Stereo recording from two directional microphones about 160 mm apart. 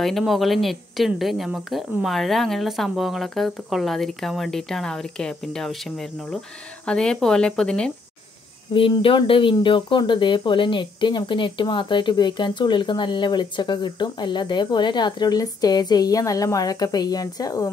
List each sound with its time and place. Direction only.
0.0 s speech: centre (ahead or behind)
8.7 s speech: 35° left (ahead or behind)